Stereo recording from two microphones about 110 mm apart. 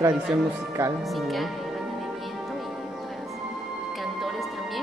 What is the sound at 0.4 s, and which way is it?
Speech, 25° right (ahead or behind).